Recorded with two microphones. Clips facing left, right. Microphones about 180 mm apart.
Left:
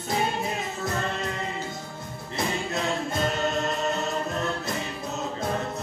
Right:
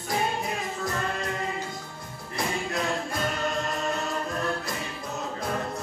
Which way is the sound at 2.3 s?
25° left (ahead or behind).